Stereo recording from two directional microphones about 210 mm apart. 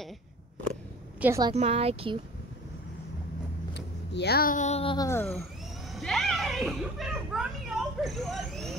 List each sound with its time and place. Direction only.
1.2 s a woman's voice: 15° right (ahead or behind)
1.5 s speech: 30° right (ahead or behind)
3.7 s speech: 55° left (ahead or behind); by 4.9 s 30° left (ahead or behind)
4.9 s speech: 15° left (ahead or behind)
5.9 s a sound: centre (ahead or behind)